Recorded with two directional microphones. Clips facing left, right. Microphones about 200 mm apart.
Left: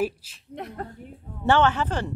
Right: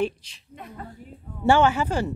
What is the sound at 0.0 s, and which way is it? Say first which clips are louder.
Speech: right 1 dB; 5° left (ahead or behind).